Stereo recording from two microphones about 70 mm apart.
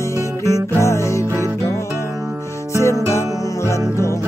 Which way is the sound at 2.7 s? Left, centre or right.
Left.